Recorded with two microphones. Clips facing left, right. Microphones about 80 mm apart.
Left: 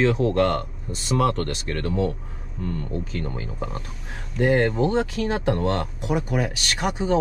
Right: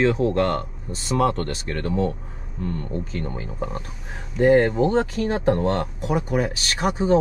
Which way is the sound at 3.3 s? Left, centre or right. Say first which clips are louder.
Right 2 dB; centre.